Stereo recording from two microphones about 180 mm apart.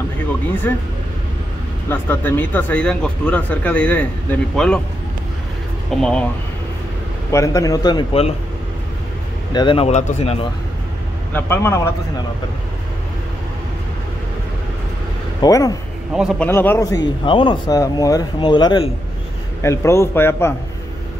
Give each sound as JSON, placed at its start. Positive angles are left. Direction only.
{"t": 0.7, "sound": "speech", "side_deg": 10}
{"t": 1.9, "sound": "speech", "side_deg": 10}
{"t": 5.9, "sound": "speech", "side_deg": 5}
{"t": 7.2, "sound": "speech", "side_deg": 15}
{"t": 9.5, "sound": "speech", "side_deg": 25}
{"t": 11.3, "sound": "speech", "side_deg": 10}
{"t": 15.4, "sound": "speech", "side_deg": 20}
{"t": 16.1, "sound": "speech", "side_deg": -5}
{"t": 16.4, "sound": "speech", "side_deg": 15}